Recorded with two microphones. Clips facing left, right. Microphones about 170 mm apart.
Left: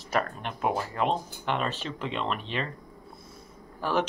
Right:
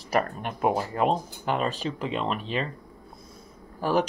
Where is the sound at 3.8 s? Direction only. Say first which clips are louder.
Right 3 dB; 40° right (ahead or behind).